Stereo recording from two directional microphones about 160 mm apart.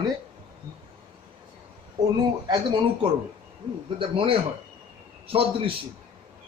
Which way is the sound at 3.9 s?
35° right (ahead or behind).